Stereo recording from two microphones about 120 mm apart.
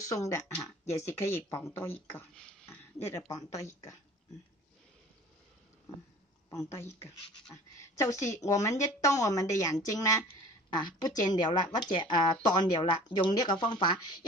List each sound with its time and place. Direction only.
0.1 s a woman's voice: 25° left (ahead or behind)
6.7 s a woman's voice: 25° left (ahead or behind)